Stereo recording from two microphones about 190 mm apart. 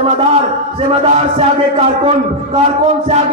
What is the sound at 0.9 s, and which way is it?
Music, 30° right (ahead or behind).